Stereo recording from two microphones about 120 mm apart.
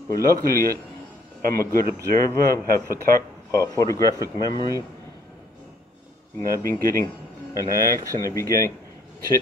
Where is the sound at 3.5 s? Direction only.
25° left (ahead or behind).